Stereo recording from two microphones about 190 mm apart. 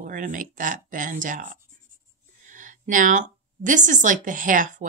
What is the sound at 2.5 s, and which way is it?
Speech, 45° right (ahead or behind).